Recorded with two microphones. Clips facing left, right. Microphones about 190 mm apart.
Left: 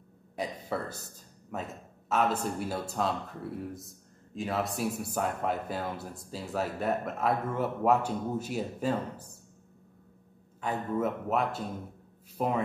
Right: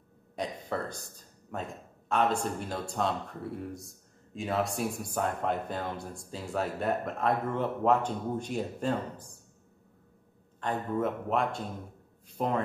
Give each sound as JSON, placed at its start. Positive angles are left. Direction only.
{"t": 0.4, "sound": "speech", "side_deg": 5}
{"t": 10.6, "sound": "a man's voice", "side_deg": 5}